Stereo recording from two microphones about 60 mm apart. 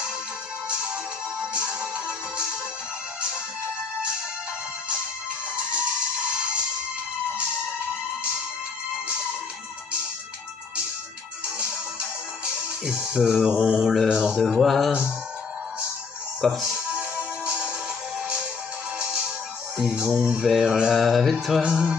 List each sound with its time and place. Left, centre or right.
1.5 s music: centre
5.6 s music: centre
11.5 s music: centre
12.8 s speech: centre
16.3 s speech: centre
16.6 s music: centre
18.9 s music: centre
19.8 s speech: centre
20.4 s music: centre
21.0 s music: centre